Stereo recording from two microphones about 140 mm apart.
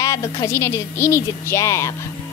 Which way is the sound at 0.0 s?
25° left (ahead or behind).